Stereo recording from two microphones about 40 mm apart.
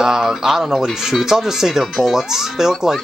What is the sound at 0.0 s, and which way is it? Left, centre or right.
Speech, centre.